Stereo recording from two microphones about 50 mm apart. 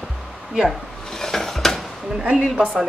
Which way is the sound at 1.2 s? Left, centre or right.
Centre.